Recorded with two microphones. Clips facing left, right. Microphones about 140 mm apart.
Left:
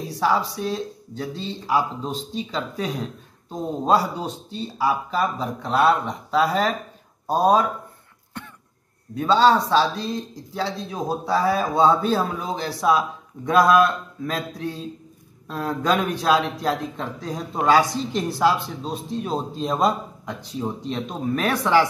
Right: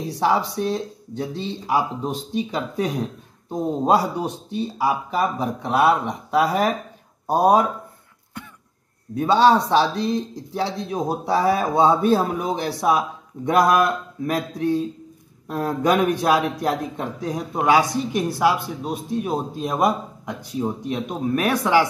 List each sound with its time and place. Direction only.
0.1 s a man's voice: 20° right (ahead or behind)
9.2 s a man's voice: 15° right (ahead or behind)